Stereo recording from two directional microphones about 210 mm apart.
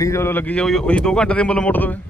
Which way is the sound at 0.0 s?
15° left (ahead or behind).